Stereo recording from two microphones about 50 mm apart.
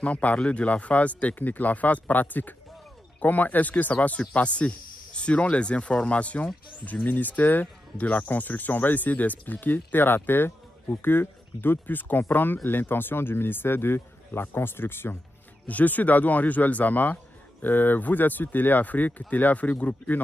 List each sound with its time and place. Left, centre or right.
0.0 s speech: left
15.6 s speech: left